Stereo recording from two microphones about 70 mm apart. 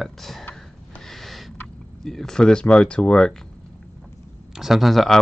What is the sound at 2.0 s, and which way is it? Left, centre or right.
Speech, centre.